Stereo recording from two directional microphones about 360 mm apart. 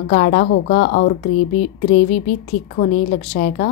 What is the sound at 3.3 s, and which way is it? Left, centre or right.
Speech, left.